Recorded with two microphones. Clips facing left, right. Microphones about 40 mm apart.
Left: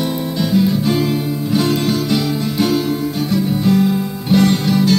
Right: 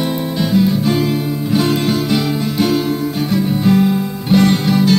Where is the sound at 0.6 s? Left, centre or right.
Centre.